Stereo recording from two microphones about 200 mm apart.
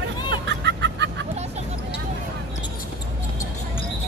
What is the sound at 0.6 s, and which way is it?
Vehicle, 60° right (ahead or behind).